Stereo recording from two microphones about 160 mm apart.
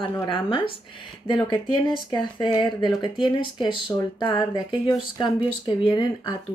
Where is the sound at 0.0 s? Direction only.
35° left (ahead or behind).